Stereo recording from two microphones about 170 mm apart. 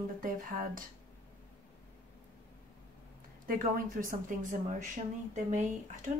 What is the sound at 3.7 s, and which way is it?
Speech, 55° right (ahead or behind).